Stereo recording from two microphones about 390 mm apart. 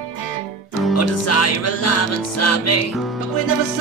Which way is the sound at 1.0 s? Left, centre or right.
Left.